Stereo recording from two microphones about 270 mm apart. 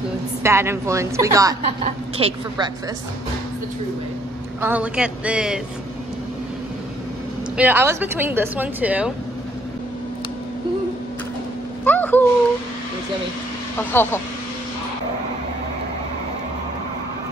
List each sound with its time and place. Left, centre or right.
0.4 s a woman's voice: centre
4.6 s speech: centre
7.5 s a woman's voice: centre
11.8 s speech: centre
13.7 s speech: centre